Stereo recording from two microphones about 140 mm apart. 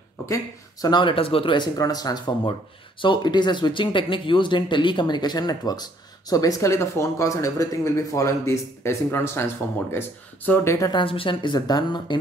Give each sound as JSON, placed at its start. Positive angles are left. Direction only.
{"t": 0.3, "sound": "speech", "side_deg": 30}